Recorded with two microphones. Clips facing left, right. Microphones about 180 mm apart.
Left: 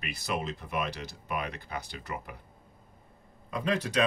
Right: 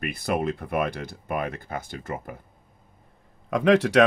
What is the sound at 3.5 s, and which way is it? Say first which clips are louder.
Speech: right 11 dB; 80° right.